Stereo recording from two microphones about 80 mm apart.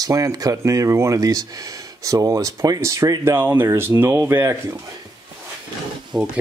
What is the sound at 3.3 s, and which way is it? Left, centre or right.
Speech, right.